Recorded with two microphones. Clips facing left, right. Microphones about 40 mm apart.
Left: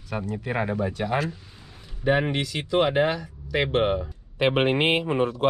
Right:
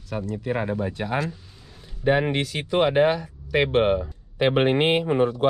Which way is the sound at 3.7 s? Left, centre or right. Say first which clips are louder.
Right 2 dB; right.